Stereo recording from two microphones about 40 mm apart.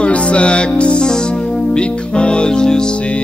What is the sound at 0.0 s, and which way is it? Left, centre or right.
Music, left.